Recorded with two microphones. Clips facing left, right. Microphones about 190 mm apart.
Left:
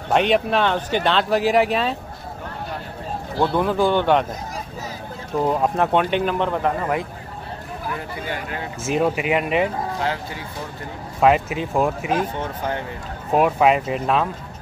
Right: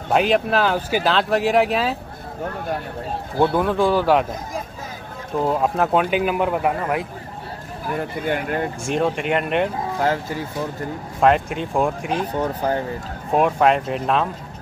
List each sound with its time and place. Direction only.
0.1 s speech: centre (ahead or behind)
3.5 s speech: centre (ahead or behind)
5.4 s speech: centre (ahead or behind)
7.9 s speech: 50° right (ahead or behind)
8.8 s speech: 5° left (ahead or behind)
11.1 s speech: 5° left (ahead or behind)
12.4 s speech: 35° right (ahead or behind)
13.3 s speech: 5° left (ahead or behind)